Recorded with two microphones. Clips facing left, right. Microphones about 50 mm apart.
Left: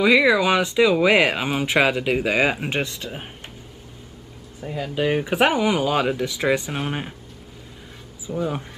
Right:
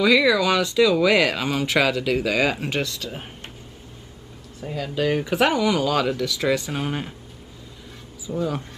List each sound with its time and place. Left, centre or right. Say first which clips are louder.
0.0 s speech: left 1 dB; left
4.7 s speech: left 1 dB; centre
8.4 s speech: even; centre